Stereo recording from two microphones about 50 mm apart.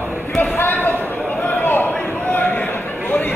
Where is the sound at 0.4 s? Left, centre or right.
Left.